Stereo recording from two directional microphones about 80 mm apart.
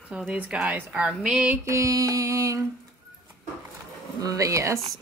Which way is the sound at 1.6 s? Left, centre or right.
Right.